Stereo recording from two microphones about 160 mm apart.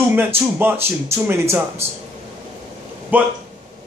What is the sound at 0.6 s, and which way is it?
Speech, 15° right (ahead or behind).